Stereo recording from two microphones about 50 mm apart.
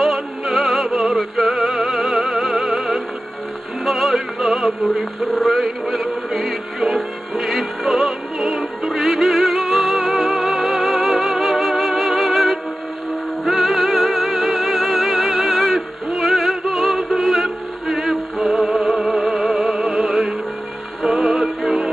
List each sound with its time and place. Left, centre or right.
0.0 s music: centre
2.1 s opera: centre
2.7 s music: centre
16.1 s music: centre